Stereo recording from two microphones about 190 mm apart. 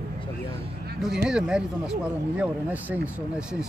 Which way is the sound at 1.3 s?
5° right (ahead or behind).